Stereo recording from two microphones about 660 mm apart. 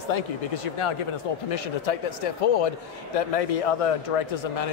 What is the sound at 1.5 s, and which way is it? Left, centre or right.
A man's voice, left.